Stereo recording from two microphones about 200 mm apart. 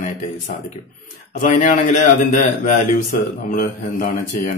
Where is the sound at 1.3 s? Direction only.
40° left (ahead or behind).